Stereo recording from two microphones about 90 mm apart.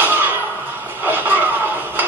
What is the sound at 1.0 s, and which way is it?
Music, 20° right (ahead or behind).